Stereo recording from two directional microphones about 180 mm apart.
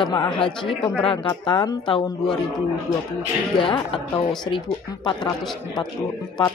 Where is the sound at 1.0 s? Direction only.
30° left (ahead or behind).